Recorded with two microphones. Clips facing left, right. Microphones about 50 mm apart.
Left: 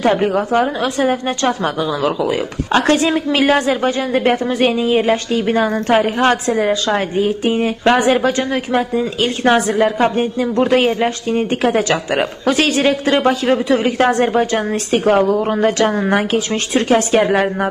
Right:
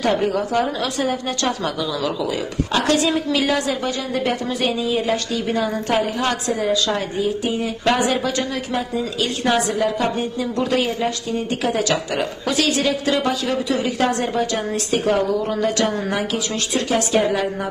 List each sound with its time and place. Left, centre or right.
0.0 s a woman's voice: left